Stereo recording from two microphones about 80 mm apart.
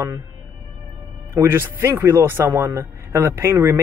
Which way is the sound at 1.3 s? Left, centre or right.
Right.